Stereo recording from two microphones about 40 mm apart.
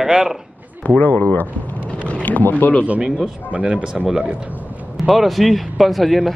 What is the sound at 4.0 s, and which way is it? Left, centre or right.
Speech, centre.